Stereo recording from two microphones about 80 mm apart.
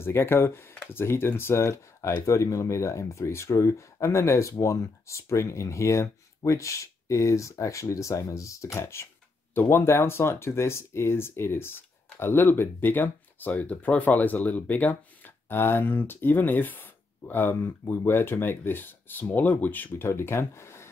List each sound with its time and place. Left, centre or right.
0.0 s speech: left